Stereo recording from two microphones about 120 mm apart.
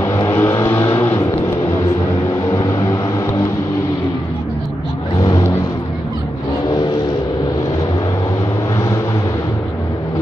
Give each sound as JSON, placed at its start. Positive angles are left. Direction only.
{"t": 0.0, "sound": "vehicle", "side_deg": 25}
{"t": 2.5, "sound": "vehicle", "side_deg": 30}
{"t": 5.2, "sound": "vehicle", "side_deg": 35}